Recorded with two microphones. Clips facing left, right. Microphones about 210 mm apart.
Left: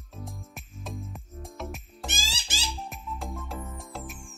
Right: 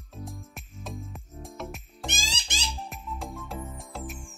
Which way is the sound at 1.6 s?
Centre (ahead or behind).